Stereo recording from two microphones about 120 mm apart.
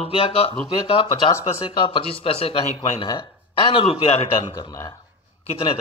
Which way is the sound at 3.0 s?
45° left (ahead or behind).